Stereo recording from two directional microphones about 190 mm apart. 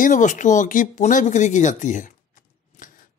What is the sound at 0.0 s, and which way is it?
Speech, 40° left (ahead or behind).